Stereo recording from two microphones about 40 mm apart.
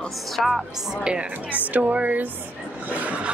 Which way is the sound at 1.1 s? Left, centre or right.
Right.